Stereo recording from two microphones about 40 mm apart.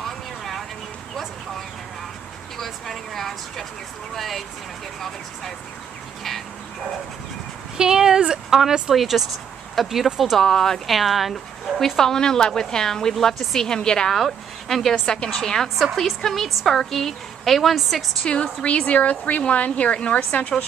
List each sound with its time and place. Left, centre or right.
2.5 s vehicle: centre
4.1 s a woman's voice: centre
7.7 s a sound: centre
8.5 s a woman's voice: centre
10.4 s a woman's voice: centre
10.9 s a woman's voice: centre
12.0 s a woman's voice: centre
14.1 s a woman's voice: centre
18.2 s speech: left
20.2 s speech: left